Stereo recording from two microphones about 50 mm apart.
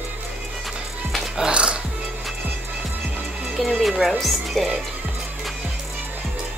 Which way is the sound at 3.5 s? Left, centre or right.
Centre.